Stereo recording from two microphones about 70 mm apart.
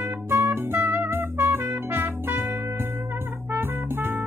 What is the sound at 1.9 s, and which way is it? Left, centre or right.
Music, right.